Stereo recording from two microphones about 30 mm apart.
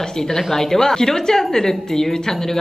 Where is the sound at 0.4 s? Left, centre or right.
Centre.